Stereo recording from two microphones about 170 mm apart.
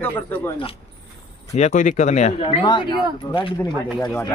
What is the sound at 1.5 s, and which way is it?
Speech, 45° left (ahead or behind).